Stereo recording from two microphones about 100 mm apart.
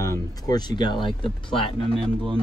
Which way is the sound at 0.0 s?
35° left (ahead or behind).